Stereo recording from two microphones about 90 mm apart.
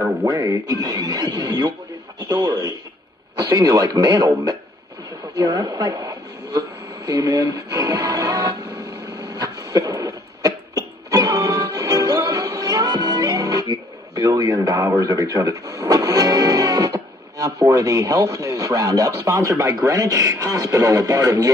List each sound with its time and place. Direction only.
0.2 s speech: 40° right (ahead or behind)
9.3 s cough: 45° right (ahead or behind)